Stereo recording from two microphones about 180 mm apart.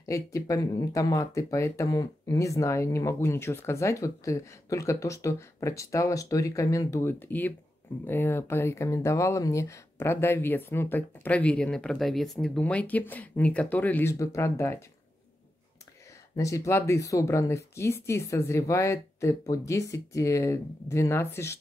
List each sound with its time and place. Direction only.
0.0 s speech: 20° left (ahead or behind)
16.3 s speech: 15° left (ahead or behind)